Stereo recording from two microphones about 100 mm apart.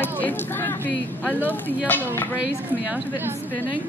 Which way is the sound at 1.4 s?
20° left (ahead or behind).